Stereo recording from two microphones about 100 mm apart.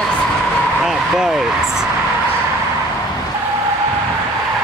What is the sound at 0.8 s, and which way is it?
Speech, 5° right (ahead or behind).